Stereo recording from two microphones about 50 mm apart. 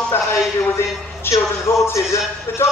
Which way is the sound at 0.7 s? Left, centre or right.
Left.